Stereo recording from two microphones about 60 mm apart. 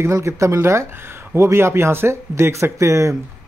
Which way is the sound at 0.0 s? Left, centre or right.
Right.